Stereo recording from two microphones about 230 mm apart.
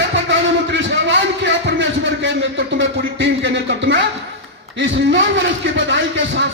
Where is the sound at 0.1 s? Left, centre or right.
Right.